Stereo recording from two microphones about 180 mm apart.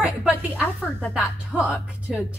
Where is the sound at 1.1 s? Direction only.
5° right (ahead or behind).